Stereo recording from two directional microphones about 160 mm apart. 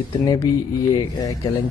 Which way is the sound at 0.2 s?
20° left (ahead or behind).